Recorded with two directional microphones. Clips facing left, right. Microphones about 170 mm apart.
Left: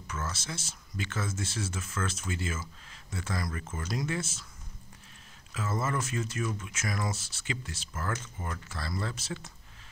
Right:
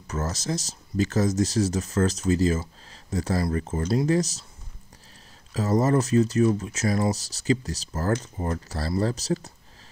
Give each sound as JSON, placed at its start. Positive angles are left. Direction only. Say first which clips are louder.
{"t": 0.0, "sound": "speech", "louder": "right 8 dB", "side_deg": -40}
{"t": 5.5, "sound": "speech", "louder": "right 11 dB", "side_deg": -40}